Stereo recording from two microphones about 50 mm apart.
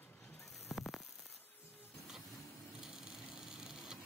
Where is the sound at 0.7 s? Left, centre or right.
Centre.